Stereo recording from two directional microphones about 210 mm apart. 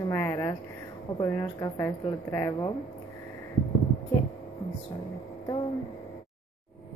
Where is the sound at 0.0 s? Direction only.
15° left (ahead or behind).